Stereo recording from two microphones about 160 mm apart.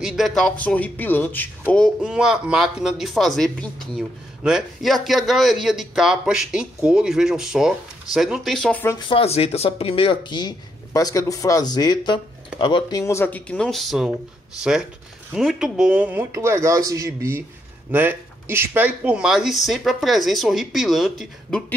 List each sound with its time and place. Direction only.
0.0 s speech: centre (ahead or behind)
2.0 s speech: 5° right (ahead or behind)
9.1 s speech: 40° left (ahead or behind)
13.0 s speech: 15° left (ahead or behind)